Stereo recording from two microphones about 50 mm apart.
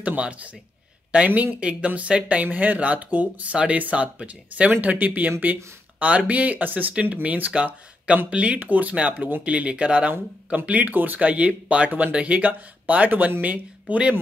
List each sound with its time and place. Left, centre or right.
0.0 s speech: right